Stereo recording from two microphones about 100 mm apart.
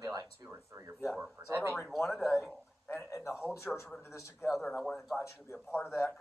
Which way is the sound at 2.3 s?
25° left (ahead or behind).